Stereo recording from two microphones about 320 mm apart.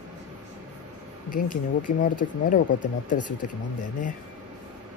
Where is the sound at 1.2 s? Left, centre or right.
Left.